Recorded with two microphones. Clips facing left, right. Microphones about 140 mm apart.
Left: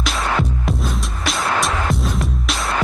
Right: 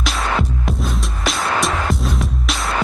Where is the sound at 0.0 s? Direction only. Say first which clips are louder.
Even; centre (ahead or behind).